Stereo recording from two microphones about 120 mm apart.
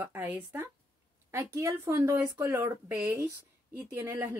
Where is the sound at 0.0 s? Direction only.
20° right (ahead or behind).